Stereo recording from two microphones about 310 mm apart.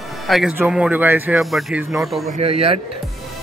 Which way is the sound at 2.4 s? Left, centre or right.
Centre.